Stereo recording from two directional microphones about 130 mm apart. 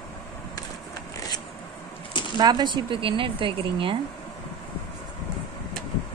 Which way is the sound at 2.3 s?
30° right (ahead or behind).